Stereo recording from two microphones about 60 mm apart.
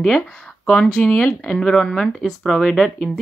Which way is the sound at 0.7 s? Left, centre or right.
Centre.